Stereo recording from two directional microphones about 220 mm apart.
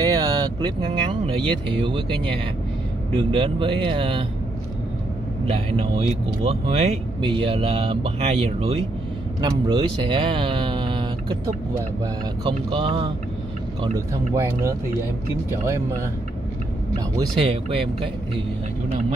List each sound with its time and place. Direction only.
0.0 s speech: 15° right (ahead or behind)
5.7 s speech: 25° right (ahead or behind)
13.9 s speech: 15° right (ahead or behind)
17.2 s speech: 25° right (ahead or behind)